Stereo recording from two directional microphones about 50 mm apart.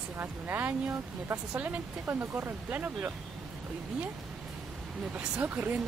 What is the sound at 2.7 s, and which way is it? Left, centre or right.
Speech, right.